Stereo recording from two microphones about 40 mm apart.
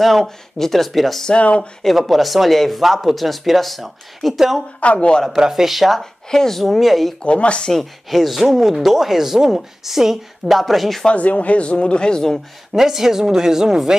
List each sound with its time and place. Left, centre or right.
0.0 s speech: centre
1.4 s speech: left
1.8 s speech: centre
4.7 s speech: left
5.3 s speech: centre
5.9 s speech: centre
7.2 s speech: left
7.7 s speech: centre
11.1 s speech: left; by 12.4 s centre
12.7 s speech: centre